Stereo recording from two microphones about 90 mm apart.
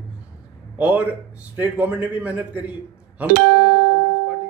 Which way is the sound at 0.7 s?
15° right (ahead or behind).